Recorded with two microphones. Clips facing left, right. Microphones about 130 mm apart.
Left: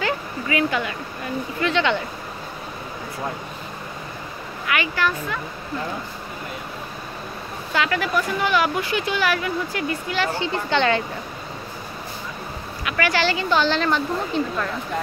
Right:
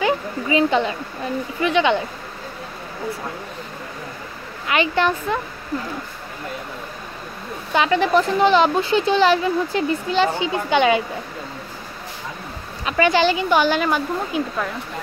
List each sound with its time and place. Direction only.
0.0 s a sound: 25° right (ahead or behind)
1.6 s speech: 15° right (ahead or behind)
4.6 s speech: 25° right (ahead or behind)
7.7 s speech: 25° right (ahead or behind)
12.9 s speech: 20° right (ahead or behind)